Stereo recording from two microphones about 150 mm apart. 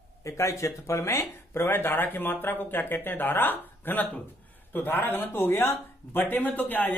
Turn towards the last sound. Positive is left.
turn(degrees=10)  # may be behind; listen again after turning